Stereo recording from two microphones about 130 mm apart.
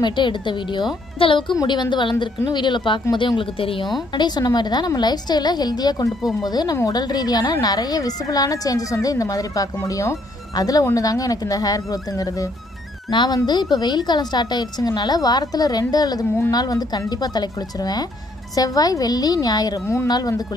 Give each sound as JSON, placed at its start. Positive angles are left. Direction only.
{"t": 0.0, "sound": "a woman's voice", "side_deg": 35}
{"t": 4.1, "sound": "a woman's voice", "side_deg": 35}